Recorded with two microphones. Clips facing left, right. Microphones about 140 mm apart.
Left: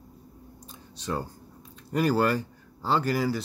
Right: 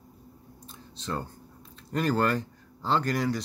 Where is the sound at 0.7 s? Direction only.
10° left (ahead or behind).